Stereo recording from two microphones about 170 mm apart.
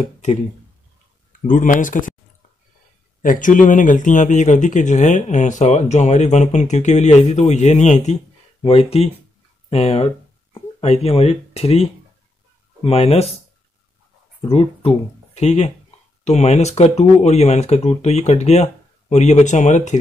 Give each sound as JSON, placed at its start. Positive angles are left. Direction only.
{"t": 1.4, "sound": "speech", "side_deg": 50}
{"t": 3.2, "sound": "speech", "side_deg": 50}
{"t": 9.7, "sound": "speech", "side_deg": 35}
{"t": 14.5, "sound": "speech", "side_deg": 35}